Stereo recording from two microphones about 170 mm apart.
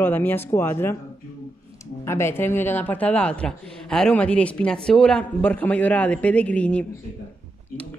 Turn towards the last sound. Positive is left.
turn(degrees=10)  # may be behind; listen again after turning